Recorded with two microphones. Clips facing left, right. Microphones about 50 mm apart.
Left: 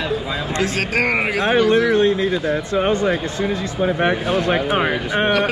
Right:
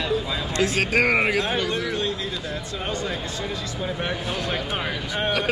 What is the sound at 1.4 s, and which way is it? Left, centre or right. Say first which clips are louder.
Speech: left 10 dB; left.